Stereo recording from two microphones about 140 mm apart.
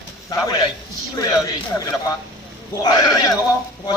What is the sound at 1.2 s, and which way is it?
Speech, 25° left (ahead or behind).